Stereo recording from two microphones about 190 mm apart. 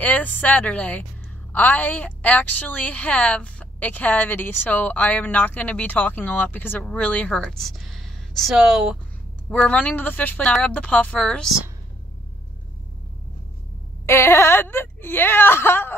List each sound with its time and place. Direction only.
0.0 s a woman's voice: 10° left (ahead or behind)
14.0 s a woman's voice: 10° left (ahead or behind)